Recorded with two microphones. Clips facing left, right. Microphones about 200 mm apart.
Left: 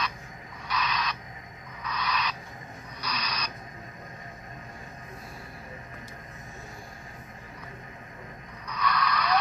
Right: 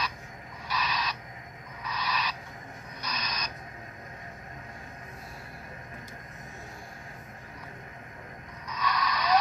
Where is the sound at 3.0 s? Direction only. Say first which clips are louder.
Left 2 dB; 50° right (ahead or behind).